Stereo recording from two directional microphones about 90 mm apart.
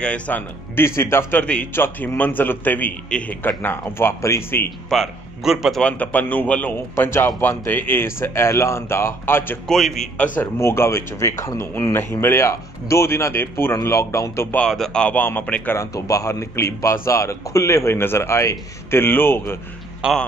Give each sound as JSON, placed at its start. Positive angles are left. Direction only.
{"t": 0.0, "sound": "a man's voice", "side_deg": 15}
{"t": 0.7, "sound": "speech", "side_deg": 30}
{"t": 4.8, "sound": "a man's voice", "side_deg": 0}
{"t": 5.8, "sound": "a man's voice", "side_deg": 15}
{"t": 7.1, "sound": "speech", "side_deg": 30}
{"t": 9.7, "sound": "a man's voice", "side_deg": 5}
{"t": 10.4, "sound": "a man's voice", "side_deg": 30}
{"t": 14.5, "sound": "a man's voice", "side_deg": 10}
{"t": 15.7, "sound": "a man's voice", "side_deg": 35}
{"t": 20.0, "sound": "speech", "side_deg": -10}